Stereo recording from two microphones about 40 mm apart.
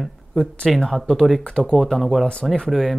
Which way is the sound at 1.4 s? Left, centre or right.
Left.